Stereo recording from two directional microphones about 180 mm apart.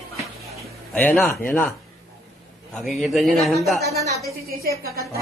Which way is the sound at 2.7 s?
Centre (ahead or behind).